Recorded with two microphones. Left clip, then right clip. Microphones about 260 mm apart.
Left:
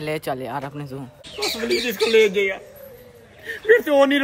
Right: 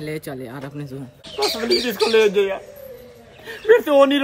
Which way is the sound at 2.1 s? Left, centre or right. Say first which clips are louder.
Even; centre.